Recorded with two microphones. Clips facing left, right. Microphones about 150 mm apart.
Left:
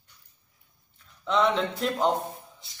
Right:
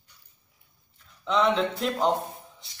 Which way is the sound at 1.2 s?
Centre (ahead or behind).